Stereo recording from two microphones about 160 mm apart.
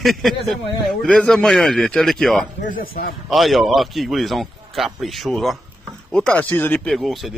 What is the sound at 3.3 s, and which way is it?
Speech, centre (ahead or behind).